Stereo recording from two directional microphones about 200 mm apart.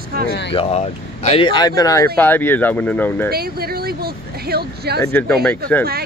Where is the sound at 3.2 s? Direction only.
50° right (ahead or behind).